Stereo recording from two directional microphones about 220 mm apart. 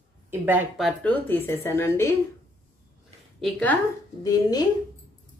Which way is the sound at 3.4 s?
5° left (ahead or behind).